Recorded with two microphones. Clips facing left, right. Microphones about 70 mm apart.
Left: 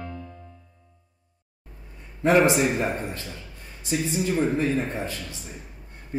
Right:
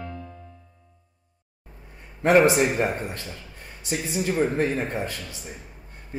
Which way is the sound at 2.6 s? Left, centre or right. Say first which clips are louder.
Right 1 dB; right.